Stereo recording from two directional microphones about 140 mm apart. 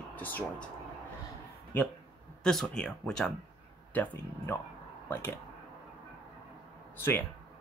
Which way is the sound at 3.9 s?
20° left (ahead or behind).